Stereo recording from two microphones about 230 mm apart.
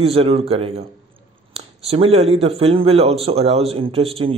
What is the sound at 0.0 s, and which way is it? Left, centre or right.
Speech, right.